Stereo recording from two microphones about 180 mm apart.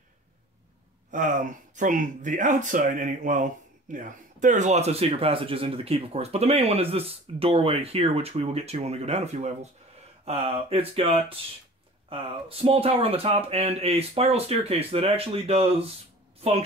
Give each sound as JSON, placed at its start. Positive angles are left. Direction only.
{"t": 1.1, "sound": "speech", "side_deg": -45}